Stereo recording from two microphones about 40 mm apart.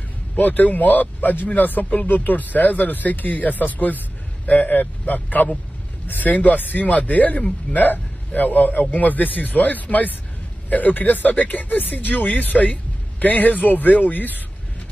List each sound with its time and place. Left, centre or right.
0.4 s a man's voice: left